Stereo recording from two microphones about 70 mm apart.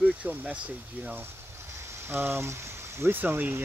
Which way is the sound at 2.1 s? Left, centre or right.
Right.